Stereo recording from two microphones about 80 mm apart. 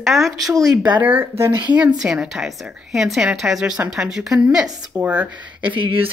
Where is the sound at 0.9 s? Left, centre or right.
Right.